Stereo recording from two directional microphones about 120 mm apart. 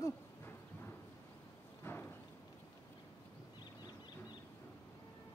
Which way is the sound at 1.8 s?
15° left (ahead or behind).